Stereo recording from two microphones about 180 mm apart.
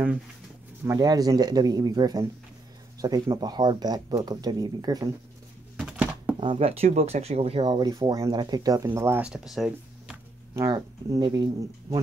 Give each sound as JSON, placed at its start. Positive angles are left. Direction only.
{"t": 0.8, "sound": "speech", "side_deg": -20}
{"t": 5.8, "sound": "a sound", "side_deg": -5}
{"t": 6.4, "sound": "speech", "side_deg": -30}
{"t": 10.5, "sound": "speech", "side_deg": -15}